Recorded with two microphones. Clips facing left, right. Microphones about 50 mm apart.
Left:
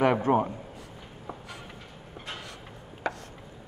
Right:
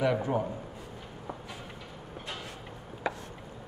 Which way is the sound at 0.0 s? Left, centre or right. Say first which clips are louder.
Left 5 dB; left.